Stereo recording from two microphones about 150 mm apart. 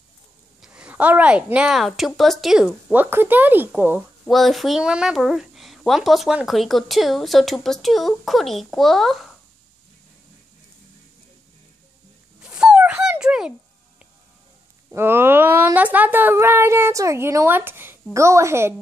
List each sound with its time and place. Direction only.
0.6 s a woman's voice: 5° right (ahead or behind)
4.3 s speech: centre (ahead or behind)
12.4 s a sound: 5° right (ahead or behind)
14.9 s a woman's voice: 15° right (ahead or behind)